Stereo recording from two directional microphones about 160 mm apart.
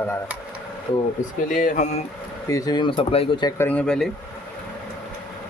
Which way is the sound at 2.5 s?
20° left (ahead or behind).